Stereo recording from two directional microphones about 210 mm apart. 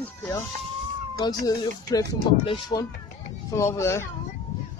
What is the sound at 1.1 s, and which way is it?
Speech, 20° left (ahead or behind).